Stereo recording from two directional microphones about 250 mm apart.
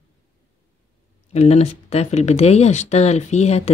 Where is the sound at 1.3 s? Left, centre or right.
Left.